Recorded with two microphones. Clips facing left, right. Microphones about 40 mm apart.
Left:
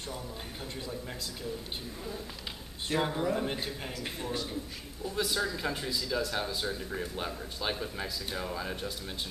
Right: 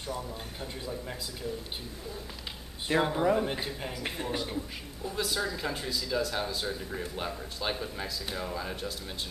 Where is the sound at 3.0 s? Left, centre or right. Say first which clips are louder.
Right 4 dB; centre.